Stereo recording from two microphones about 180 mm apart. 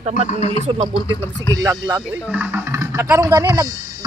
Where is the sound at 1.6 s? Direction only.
20° right (ahead or behind).